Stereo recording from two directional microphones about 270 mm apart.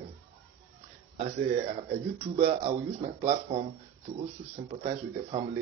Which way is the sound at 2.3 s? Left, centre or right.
Right.